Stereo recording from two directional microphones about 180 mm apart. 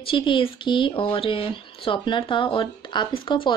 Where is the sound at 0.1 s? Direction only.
30° left (ahead or behind).